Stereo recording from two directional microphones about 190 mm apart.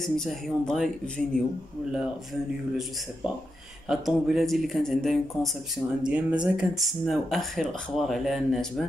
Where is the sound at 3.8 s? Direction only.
Centre (ahead or behind).